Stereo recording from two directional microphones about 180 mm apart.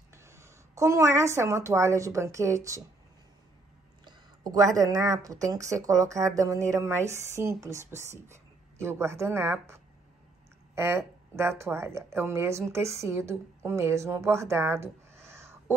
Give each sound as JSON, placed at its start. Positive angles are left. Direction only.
{"t": 0.1, "sound": "a woman's voice", "side_deg": -15}
{"t": 4.0, "sound": "speech", "side_deg": -20}